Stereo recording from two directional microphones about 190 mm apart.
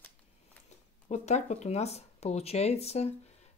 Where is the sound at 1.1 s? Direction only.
35° left (ahead or behind).